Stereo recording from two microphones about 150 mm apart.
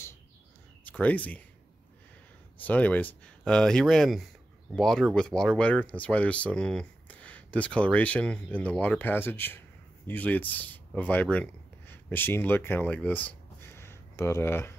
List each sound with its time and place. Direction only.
0.8 s speech: 10° left (ahead or behind)
2.6 s speech: 10° left (ahead or behind)